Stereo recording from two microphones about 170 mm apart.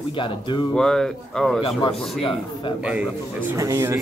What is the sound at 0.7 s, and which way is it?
Speech, 5° left (ahead or behind).